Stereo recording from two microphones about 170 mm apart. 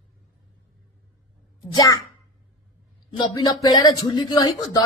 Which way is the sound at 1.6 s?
20° left (ahead or behind).